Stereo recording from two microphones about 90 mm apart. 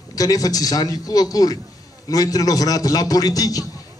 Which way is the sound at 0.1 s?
40° left (ahead or behind).